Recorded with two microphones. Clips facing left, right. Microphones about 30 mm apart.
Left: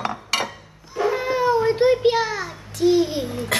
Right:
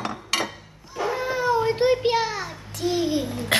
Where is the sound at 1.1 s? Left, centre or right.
Centre.